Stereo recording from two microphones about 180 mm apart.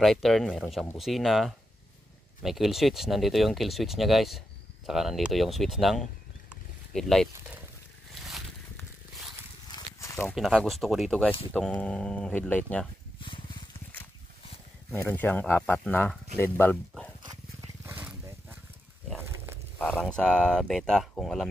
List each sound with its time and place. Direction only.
0.0 s speech: centre (ahead or behind)
6.5 s a sound: centre (ahead or behind)
8.1 s boat: centre (ahead or behind)
9.7 s a sound: 20° left (ahead or behind)
10.3 s speech: centre (ahead or behind)
14.9 s speech: 15° left (ahead or behind)
17.8 s wild animals: 10° right (ahead or behind)
19.8 s speech: 5° left (ahead or behind)